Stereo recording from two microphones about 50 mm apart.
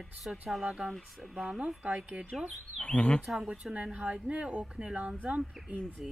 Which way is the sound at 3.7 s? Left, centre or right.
Right.